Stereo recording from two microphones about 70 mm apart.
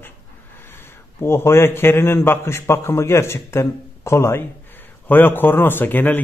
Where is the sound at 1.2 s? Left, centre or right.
Left.